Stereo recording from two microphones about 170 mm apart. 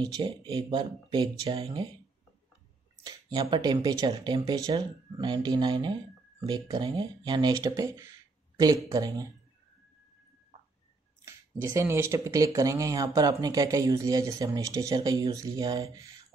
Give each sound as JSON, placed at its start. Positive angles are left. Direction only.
{"t": 0.0, "sound": "speech", "side_deg": -25}
{"t": 3.0, "sound": "speech", "side_deg": -25}
{"t": 11.2, "sound": "speech", "side_deg": -15}